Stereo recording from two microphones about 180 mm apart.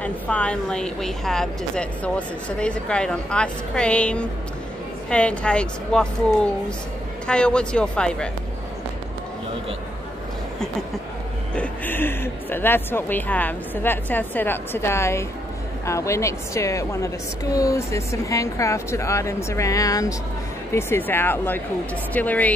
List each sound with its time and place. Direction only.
0.0 s a woman's voice: 5° left (ahead or behind)
7.2 s a woman's voice: 5° left (ahead or behind)
11.5 s speech: 10° left (ahead or behind)